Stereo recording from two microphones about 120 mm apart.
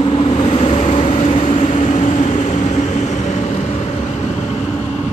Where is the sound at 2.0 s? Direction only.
90° left.